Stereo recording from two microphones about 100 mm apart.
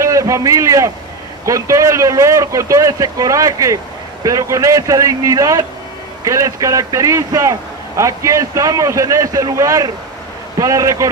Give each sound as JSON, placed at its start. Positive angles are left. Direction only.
{"t": 0.0, "sound": "a man's voice", "side_deg": -30}